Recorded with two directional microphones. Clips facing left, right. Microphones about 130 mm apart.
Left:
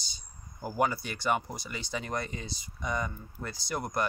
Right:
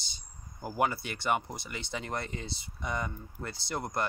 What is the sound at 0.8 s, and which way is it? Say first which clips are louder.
Speech: left 1 dB; 25° right (ahead or behind).